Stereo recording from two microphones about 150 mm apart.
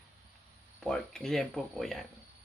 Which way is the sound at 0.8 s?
5° left (ahead or behind).